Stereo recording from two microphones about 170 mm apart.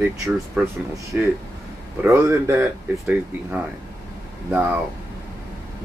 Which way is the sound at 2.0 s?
15° right (ahead or behind).